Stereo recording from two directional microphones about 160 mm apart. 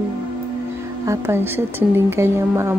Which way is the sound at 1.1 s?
15° right (ahead or behind).